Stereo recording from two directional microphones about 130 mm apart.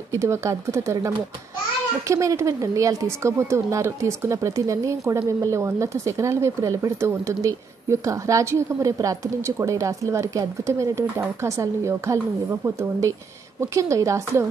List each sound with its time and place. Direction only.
0.1 s speech: 20° right (ahead or behind)